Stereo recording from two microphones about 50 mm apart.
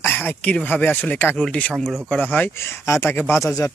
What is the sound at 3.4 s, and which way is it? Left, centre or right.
Speech, left.